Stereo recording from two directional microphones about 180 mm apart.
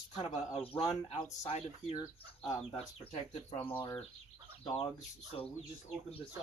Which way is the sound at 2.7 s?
30° left (ahead or behind).